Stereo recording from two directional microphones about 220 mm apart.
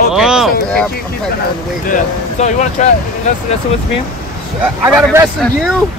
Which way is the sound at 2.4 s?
30° left (ahead or behind).